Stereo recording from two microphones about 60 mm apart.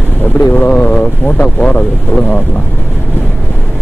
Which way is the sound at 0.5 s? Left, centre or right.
Left.